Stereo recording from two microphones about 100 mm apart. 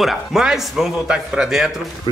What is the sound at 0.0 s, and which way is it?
Speech, centre (ahead or behind).